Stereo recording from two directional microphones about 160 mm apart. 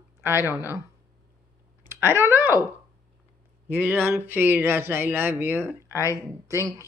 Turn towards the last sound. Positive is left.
turn(degrees=20)  # may be behind; listen again after turning